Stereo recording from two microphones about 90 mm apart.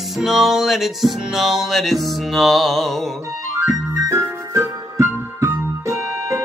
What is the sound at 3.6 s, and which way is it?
Music, 35° right (ahead or behind).